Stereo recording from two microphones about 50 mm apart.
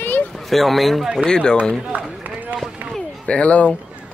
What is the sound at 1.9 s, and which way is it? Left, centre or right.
Run, right.